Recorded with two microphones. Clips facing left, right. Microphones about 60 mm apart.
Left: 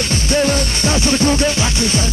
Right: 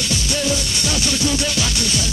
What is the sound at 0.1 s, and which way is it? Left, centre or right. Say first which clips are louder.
Music: left 6 dB; left.